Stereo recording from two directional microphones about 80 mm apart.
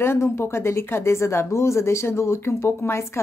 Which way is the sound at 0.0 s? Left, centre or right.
Left.